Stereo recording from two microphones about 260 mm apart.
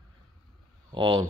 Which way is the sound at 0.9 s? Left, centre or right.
Centre.